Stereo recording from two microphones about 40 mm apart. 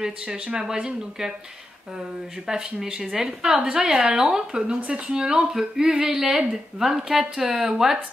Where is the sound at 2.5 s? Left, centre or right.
Centre.